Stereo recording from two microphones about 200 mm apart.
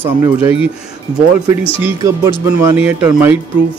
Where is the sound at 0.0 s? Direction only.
10° right (ahead or behind).